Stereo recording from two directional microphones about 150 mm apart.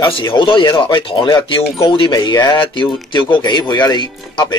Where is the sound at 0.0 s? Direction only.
30° left (ahead or behind).